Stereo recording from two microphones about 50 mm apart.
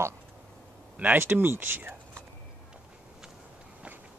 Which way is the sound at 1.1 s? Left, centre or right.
Right.